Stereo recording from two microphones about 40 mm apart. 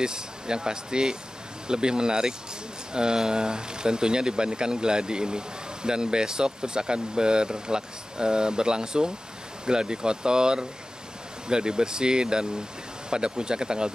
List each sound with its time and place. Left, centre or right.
0.0 s speech: centre